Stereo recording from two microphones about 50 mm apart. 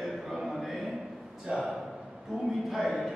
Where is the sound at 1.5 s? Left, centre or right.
Right.